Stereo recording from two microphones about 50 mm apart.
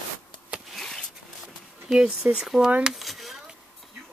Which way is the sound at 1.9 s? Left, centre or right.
Centre.